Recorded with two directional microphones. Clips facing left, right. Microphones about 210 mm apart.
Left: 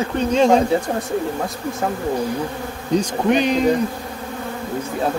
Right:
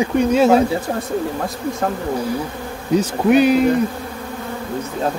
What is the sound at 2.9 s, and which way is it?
Speech, 5° right (ahead or behind).